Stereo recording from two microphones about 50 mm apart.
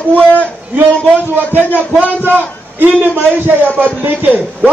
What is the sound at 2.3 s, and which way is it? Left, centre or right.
A man's voice, right.